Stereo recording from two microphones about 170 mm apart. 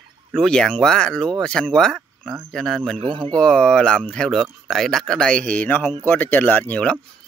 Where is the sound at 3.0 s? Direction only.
30° right (ahead or behind).